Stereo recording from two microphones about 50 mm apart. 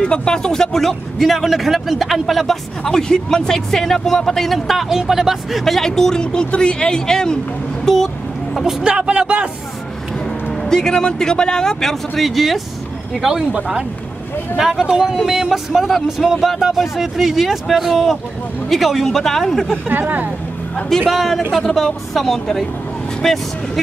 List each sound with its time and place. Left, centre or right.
0.0 s speech: centre
5.8 s speech: centre
7.8 s speech: centre
8.8 s speech: right
10.5 s speech: centre
14.6 s speech: centre
19.9 s speech: right
21.1 s speech: centre